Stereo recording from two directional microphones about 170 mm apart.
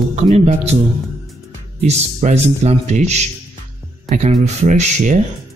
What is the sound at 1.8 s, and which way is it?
Speech, 40° right (ahead or behind).